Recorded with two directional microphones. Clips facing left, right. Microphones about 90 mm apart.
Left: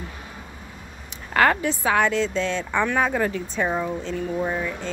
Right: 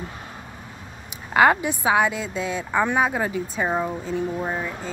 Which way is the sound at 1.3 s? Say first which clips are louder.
Right 2 dB; 15° right (ahead or behind).